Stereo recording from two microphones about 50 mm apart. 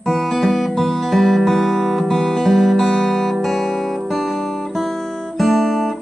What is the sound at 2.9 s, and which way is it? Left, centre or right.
Music, centre.